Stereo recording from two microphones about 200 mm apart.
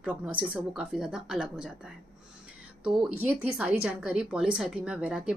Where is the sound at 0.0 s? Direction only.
5° right (ahead or behind).